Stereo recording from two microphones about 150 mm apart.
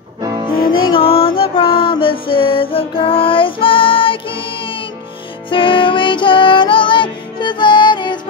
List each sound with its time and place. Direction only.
0.8 s music: 35° left (ahead or behind)